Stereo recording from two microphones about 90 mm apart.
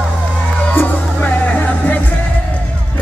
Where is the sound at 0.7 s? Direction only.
20° left (ahead or behind).